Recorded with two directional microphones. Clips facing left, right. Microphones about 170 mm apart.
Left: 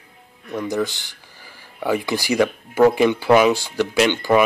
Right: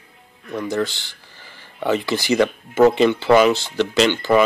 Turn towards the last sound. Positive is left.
turn(degrees=15)  # may be behind; listen again after turning